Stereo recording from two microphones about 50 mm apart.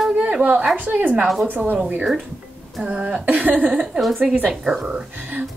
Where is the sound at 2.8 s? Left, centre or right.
Centre.